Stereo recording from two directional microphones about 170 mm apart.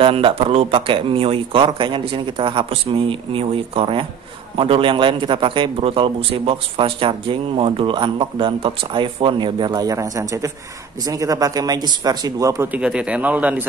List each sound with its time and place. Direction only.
0.0 s a man's voice: 35° right (ahead or behind); by 12.8 s 20° right (ahead or behind)
12.8 s a man's voice: 5° right (ahead or behind)